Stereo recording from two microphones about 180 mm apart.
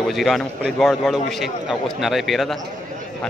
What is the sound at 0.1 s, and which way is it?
A man's voice, centre (ahead or behind).